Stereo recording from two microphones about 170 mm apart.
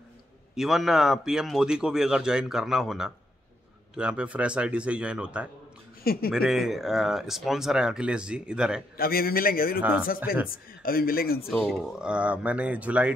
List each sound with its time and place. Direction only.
0.6 s speech: centre (ahead or behind)
8.9 s speech: 60° left (ahead or behind)
9.8 s speech: 5° right (ahead or behind)
10.5 s speech: 60° left (ahead or behind)
11.5 s speech: centre (ahead or behind)